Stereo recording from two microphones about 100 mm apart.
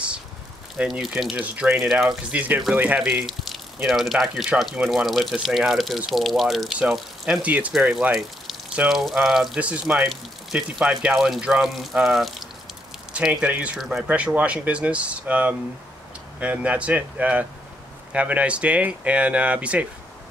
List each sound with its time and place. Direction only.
0.8 s speech: centre (ahead or behind)
1.3 s speech: 15° right (ahead or behind)
2.3 s speech: 15° right (ahead or behind)
3.0 s speech: 5° right (ahead or behind)
13.1 s speech: 15° right (ahead or behind)
14.0 s speech: 15° right (ahead or behind)